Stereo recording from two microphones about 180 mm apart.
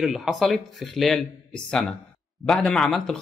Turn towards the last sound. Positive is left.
turn(degrees=5)  # may be behind; listen again after turning